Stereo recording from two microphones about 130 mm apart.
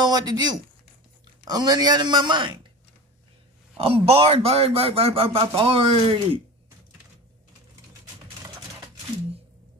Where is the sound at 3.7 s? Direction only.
45° right (ahead or behind).